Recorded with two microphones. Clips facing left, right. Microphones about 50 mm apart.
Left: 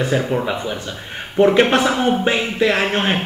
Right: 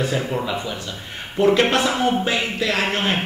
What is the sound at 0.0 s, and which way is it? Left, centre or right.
A man's voice, left.